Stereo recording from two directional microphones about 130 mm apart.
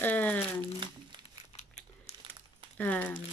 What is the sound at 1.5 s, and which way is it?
Crumpling, 60° left (ahead or behind).